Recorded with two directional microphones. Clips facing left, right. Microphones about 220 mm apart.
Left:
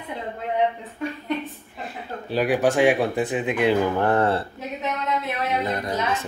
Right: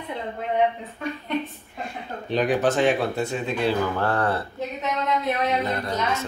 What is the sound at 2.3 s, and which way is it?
Speech, 10° left (ahead or behind).